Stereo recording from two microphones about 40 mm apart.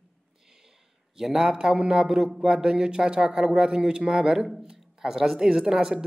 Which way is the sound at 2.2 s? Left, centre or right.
Centre.